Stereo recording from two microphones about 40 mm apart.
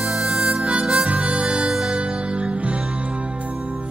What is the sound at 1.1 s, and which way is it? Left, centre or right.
Harmonica, right.